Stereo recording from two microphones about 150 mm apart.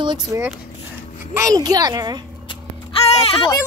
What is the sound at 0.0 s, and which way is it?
A child's voice, 30° right (ahead or behind).